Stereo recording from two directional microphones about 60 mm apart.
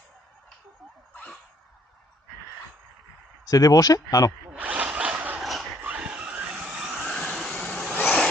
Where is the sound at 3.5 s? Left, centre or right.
Left.